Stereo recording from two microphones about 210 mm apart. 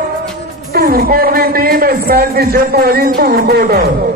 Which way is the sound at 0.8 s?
45° right (ahead or behind).